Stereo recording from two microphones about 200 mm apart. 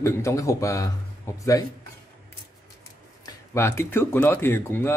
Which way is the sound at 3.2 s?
15° left (ahead or behind).